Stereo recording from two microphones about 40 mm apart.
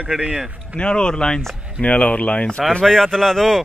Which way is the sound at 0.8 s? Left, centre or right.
Left.